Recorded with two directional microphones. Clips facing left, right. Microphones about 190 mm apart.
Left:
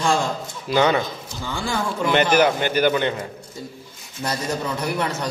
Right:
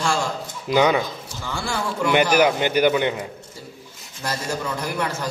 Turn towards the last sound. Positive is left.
turn(degrees=20)  # may be behind; listen again after turning